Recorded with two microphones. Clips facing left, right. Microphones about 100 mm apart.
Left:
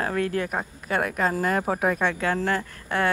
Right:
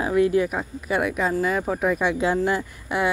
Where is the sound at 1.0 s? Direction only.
40° left (ahead or behind).